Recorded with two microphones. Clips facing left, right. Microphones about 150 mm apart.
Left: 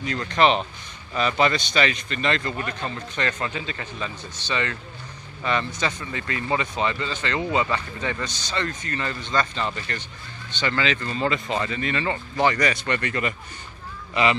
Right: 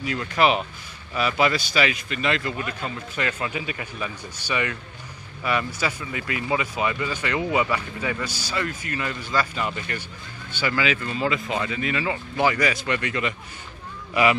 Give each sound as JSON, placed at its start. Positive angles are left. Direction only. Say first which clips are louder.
{"t": 0.0, "sound": "speech", "louder": "left 1 dB", "side_deg": -5}